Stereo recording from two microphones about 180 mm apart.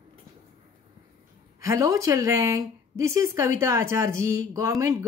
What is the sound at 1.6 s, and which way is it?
Speech, 15° right (ahead or behind).